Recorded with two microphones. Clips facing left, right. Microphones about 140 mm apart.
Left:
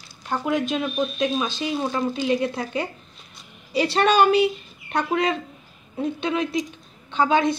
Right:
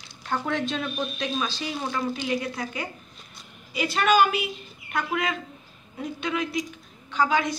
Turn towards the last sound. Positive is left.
turn(degrees=25)  # may be behind; listen again after turning